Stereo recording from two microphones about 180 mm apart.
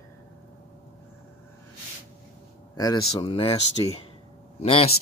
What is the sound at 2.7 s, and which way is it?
Speech, 25° left (ahead or behind).